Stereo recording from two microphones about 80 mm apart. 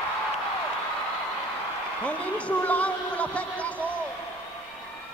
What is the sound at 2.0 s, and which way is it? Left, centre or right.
A man's voice, centre.